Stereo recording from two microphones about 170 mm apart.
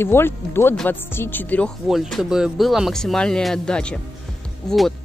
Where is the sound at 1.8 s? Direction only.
Centre (ahead or behind).